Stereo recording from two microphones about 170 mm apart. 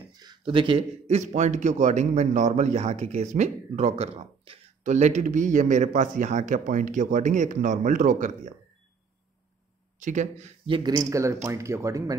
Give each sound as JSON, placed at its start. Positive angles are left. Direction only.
{"t": 0.1, "sound": "a man's voice", "side_deg": -25}
{"t": 9.9, "sound": "speech", "side_deg": -45}
{"t": 10.8, "sound": "speech", "side_deg": -20}